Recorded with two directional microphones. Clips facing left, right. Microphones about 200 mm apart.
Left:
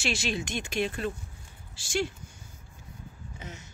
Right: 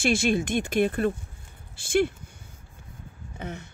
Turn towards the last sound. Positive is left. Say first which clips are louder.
# right 8 dB
turn(degrees=-55)  # may be behind; listen again after turning